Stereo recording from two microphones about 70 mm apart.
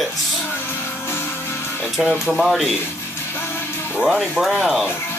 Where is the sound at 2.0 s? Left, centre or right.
Centre.